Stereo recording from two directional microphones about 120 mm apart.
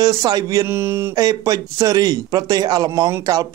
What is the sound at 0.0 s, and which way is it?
Speech, 30° right (ahead or behind).